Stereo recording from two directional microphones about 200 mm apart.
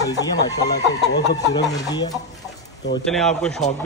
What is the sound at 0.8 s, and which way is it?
Speech, 20° left (ahead or behind).